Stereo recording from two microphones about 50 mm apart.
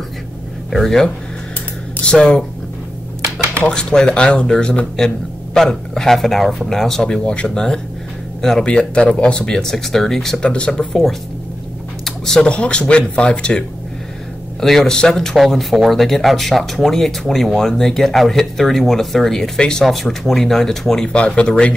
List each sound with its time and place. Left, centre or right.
0.7 s speech: centre
3.5 s speech: centre
7.1 s speech: centre
8.6 s speech: left
10.4 s speech: centre
12.4 s speech: left
14.6 s speech: centre
15.3 s speech: centre
21.1 s speech: left